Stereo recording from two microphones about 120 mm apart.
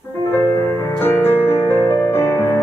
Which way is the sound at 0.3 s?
20° left (ahead or behind).